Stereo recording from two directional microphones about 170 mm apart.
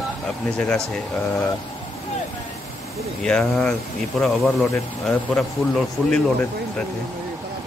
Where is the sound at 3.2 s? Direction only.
5° left (ahead or behind).